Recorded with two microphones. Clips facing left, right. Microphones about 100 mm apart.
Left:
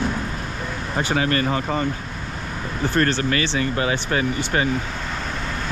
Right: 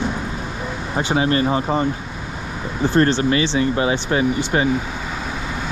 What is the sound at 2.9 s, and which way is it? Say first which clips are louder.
Speech: right 4 dB; 20° right (ahead or behind).